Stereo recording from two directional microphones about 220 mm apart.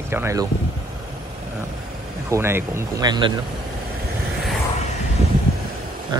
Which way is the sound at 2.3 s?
10° right (ahead or behind).